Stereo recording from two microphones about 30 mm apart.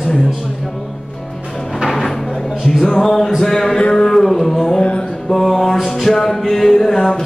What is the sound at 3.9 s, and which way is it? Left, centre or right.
Music, centre.